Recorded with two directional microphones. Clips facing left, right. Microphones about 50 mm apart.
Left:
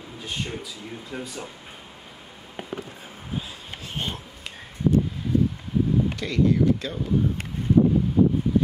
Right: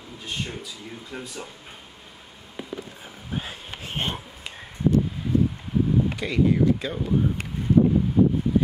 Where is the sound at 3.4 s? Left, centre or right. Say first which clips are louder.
Right 2 dB; right.